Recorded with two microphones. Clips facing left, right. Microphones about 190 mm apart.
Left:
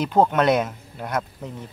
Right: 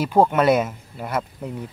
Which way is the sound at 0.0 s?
10° right (ahead or behind).